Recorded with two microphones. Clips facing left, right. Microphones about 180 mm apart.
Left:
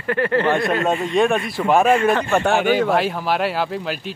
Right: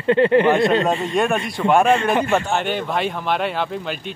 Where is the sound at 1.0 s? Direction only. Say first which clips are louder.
Left 2 dB; centre (ahead or behind).